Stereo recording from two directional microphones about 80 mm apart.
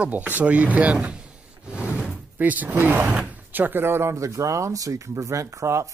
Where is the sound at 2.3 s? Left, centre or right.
Right.